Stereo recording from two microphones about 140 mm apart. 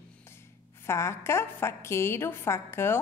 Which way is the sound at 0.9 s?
20° left (ahead or behind).